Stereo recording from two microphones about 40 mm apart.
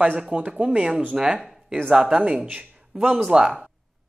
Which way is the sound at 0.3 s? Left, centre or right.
Right.